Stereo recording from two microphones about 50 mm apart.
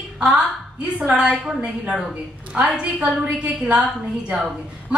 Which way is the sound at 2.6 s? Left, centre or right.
Centre.